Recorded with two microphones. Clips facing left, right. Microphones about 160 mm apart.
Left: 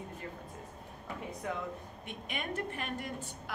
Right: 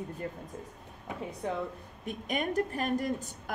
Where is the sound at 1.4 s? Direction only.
30° right (ahead or behind).